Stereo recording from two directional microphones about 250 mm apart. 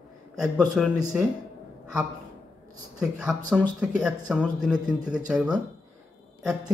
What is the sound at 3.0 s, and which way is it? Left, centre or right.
Speech, centre.